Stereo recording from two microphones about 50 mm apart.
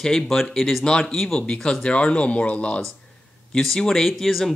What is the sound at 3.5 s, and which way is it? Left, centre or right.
Speech, centre.